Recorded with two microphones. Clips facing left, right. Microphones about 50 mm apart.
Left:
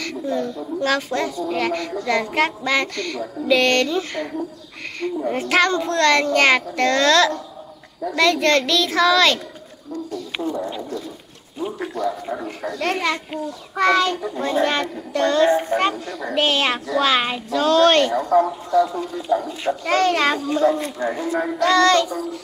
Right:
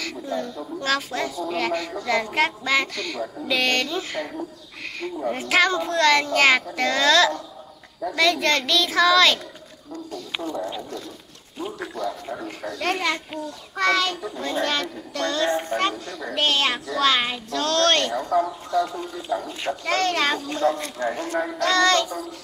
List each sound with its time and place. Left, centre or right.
0.0 s speech: centre
10.4 s speech: centre